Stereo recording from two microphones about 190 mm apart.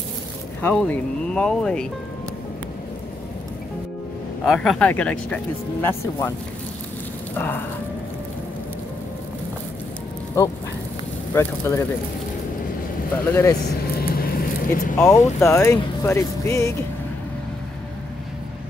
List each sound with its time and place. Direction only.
0.6 s speech: 10° left (ahead or behind)
4.5 s speech: 5° left (ahead or behind)
7.3 s speech: 10° left (ahead or behind)
10.4 s speech: 15° left (ahead or behind)
13.1 s speech: 15° left (ahead or behind)
13.9 s a sound: 50° left (ahead or behind)
15.4 s speech: 15° left (ahead or behind)